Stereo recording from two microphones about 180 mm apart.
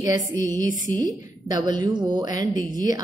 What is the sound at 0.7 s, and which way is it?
Speech, 45° left (ahead or behind).